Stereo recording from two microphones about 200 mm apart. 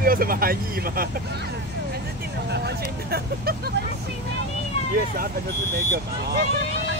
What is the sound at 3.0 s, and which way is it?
Speech, 50° right (ahead or behind).